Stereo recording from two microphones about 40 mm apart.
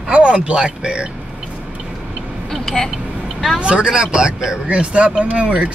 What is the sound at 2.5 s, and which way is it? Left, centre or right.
Vehicle, centre.